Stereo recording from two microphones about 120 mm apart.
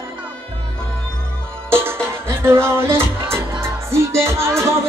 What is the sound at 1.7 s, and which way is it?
Music, 20° right (ahead or behind).